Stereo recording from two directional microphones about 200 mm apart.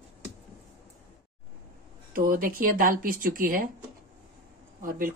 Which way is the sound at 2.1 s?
45° right (ahead or behind).